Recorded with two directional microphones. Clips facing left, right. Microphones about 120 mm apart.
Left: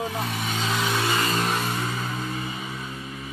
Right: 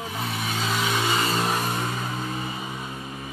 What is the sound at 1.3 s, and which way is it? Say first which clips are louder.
Vehicle: even; 10° right (ahead or behind).